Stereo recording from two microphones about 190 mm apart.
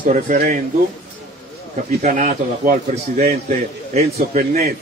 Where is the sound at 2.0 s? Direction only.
45° right (ahead or behind).